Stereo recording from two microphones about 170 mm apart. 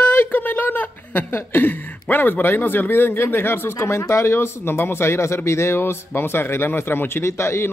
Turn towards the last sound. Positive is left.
turn(degrees=15)  # may be behind; listen again after turning